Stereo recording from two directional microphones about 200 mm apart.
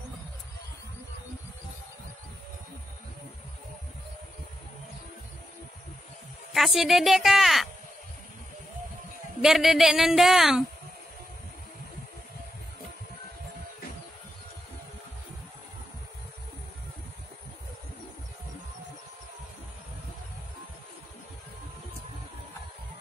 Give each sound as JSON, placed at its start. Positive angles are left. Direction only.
{"t": 6.5, "sound": "a woman's voice", "side_deg": 0}
{"t": 9.4, "sound": "a woman's voice", "side_deg": 0}